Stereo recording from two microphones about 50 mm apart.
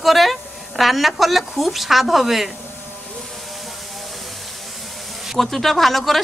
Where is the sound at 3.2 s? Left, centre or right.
Centre.